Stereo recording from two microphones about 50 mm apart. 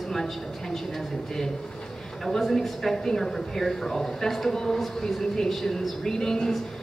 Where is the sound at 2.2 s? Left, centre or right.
Centre.